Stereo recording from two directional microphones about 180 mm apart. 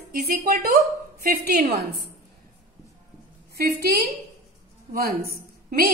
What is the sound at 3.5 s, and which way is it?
A woman's voice, 60° right (ahead or behind).